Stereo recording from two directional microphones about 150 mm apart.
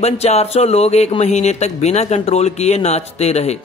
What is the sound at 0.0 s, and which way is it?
Speech, 45° left (ahead or behind).